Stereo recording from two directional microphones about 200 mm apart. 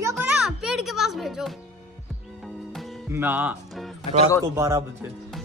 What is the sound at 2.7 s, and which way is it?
Music, centre (ahead or behind).